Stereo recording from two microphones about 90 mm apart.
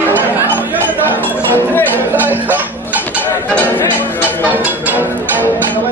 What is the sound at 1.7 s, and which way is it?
Music, 20° left (ahead or behind).